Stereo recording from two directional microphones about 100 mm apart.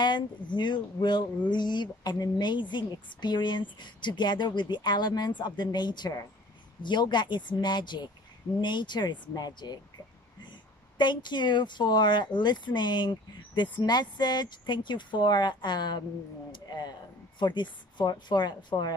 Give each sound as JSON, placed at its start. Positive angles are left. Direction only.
{"t": 0.0, "sound": "speech", "side_deg": 50}